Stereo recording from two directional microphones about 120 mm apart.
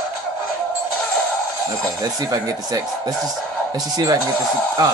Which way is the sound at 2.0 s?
30° right (ahead or behind).